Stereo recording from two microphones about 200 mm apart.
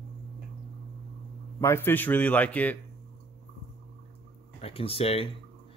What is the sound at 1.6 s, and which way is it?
A man's voice, 10° left (ahead or behind).